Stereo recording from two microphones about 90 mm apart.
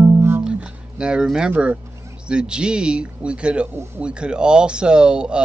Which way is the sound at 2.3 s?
10° right (ahead or behind).